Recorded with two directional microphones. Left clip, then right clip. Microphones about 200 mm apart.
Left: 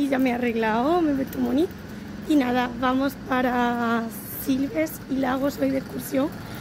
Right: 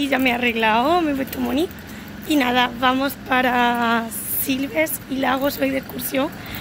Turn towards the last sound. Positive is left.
turn(degrees=5)  # may be behind; listen again after turning